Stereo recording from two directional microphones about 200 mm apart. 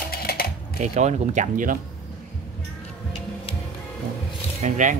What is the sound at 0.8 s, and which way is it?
Speech, 35° right (ahead or behind).